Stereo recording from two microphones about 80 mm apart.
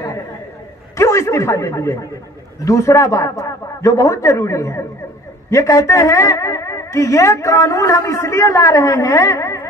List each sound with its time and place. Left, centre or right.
0.9 s a man's voice: left